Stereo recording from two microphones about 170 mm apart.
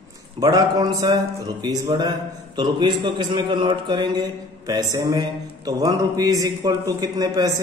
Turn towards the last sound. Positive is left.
turn(degrees=-20)  # may be behind; listen again after turning